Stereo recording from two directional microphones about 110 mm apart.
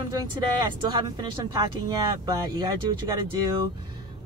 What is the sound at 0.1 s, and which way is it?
Speech, 40° right (ahead or behind).